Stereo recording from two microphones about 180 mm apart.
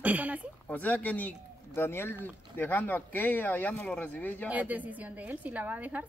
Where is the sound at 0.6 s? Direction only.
10° left (ahead or behind).